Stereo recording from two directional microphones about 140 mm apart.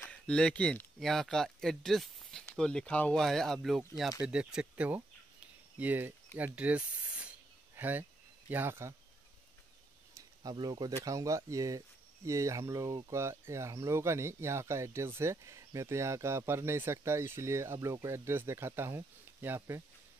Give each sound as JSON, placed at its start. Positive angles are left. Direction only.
{"t": 0.1, "sound": "speech", "side_deg": 5}
{"t": 6.3, "sound": "snake", "side_deg": -10}
{"t": 10.4, "sound": "speech", "side_deg": -30}